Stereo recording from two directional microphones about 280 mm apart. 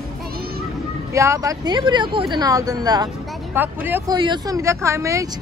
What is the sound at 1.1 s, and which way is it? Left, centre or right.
Speech, centre.